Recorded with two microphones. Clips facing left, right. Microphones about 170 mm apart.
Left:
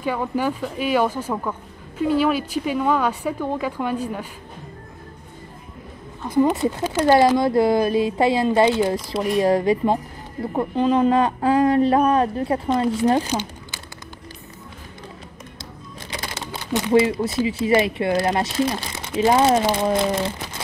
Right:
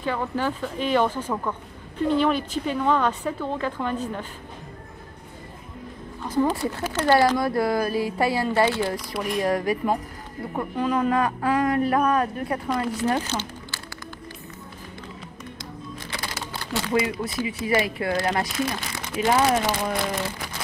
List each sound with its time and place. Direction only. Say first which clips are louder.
0.0 s speech: left 3 dB; 10° left (ahead or behind)
6.2 s speech: left 5 dB; 15° left (ahead or behind)
13.3 s crumpling: left 4 dB; 15° left (ahead or behind)
16.1 s speech: left 4 dB; 20° left (ahead or behind)